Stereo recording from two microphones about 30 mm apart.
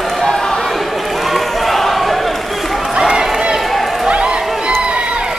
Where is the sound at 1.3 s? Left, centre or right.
Centre.